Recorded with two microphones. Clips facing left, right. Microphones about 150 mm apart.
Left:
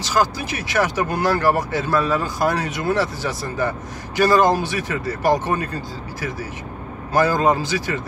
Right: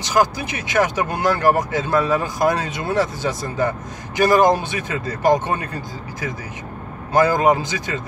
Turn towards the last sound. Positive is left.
turn(degrees=-20)  # may be behind; listen again after turning